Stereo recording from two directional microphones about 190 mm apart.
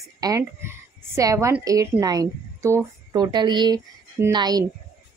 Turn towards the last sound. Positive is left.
turn(degrees=-20)  # may be behind; listen again after turning